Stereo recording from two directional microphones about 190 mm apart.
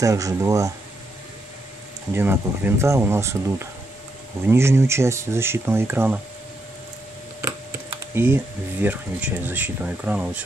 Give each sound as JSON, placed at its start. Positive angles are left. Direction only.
{"t": 0.0, "sound": "speech", "side_deg": -15}
{"t": 2.1, "sound": "speech", "side_deg": -10}
{"t": 7.4, "sound": "speech", "side_deg": -10}